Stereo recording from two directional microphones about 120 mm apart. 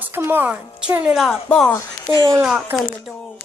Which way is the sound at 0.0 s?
15° right (ahead or behind).